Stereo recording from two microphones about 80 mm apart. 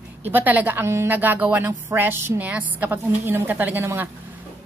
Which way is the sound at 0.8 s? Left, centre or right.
Right.